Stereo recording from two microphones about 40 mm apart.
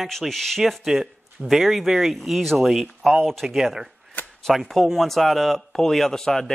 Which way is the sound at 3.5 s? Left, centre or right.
Centre.